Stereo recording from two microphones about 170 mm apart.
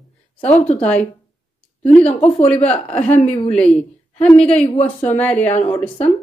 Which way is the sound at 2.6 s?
5° left (ahead or behind).